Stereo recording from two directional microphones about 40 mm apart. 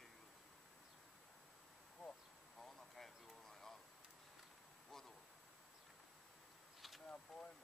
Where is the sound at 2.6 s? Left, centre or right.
Centre.